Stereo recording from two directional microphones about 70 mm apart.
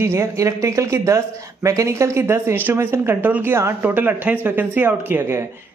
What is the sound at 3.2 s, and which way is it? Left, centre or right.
Speech, right.